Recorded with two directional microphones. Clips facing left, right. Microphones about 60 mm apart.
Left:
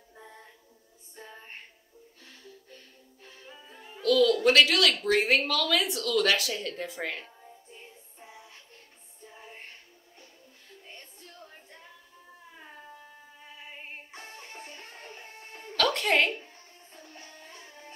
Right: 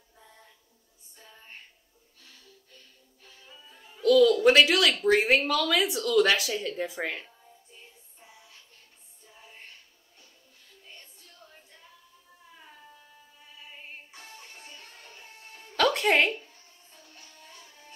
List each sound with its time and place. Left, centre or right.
0.1 s music: left
4.0 s speech: centre
7.4 s music: left
15.7 s music: centre
16.3 s music: left